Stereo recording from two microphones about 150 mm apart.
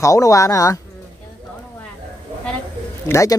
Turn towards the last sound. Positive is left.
turn(degrees=20)  # may be behind; listen again after turning